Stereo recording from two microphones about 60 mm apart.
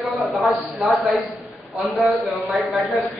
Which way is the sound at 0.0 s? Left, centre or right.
Centre.